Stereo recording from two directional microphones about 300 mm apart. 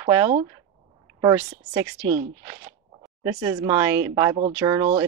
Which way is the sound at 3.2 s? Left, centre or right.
Centre.